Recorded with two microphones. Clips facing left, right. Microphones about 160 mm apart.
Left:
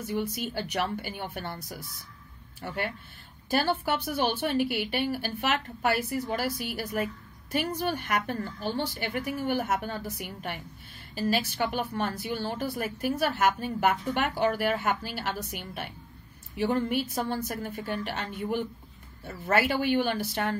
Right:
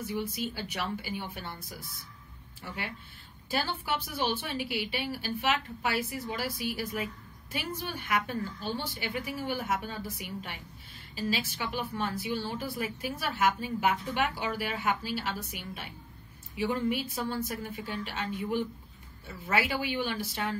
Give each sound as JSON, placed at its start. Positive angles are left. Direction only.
{"t": 0.1, "sound": "a woman's voice", "side_deg": 55}